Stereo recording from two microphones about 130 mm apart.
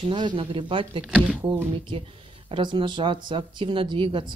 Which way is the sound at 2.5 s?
40° right (ahead or behind).